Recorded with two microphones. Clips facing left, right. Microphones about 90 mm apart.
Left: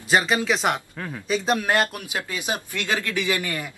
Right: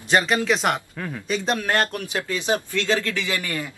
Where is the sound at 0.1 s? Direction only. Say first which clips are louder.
Right 1 dB; 5° left (ahead or behind).